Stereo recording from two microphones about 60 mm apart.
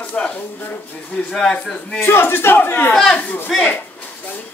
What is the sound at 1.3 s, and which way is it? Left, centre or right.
Speech, centre.